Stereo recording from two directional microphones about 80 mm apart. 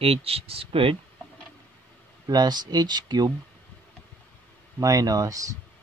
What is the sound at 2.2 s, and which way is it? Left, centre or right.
Speech, right.